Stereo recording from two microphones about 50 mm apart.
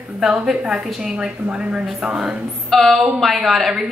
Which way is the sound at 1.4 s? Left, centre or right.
Centre.